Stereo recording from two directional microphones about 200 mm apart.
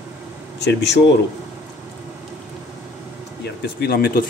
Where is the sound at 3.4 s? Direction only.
50° left (ahead or behind).